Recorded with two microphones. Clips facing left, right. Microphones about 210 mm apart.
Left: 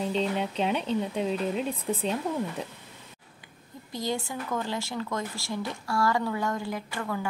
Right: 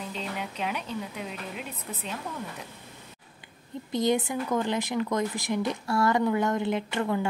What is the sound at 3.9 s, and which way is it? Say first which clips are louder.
Speech: right 6 dB; 20° right (ahead or behind).